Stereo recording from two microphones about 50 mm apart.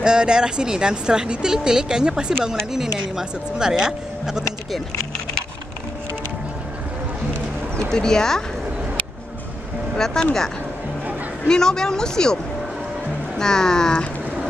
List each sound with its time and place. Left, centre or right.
0.0 s speech: centre
7.9 s speech: centre
9.9 s speech: centre
11.4 s speech: centre
13.4 s speech: centre